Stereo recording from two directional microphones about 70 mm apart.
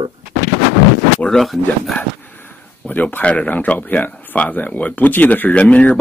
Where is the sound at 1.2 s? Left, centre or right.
Centre.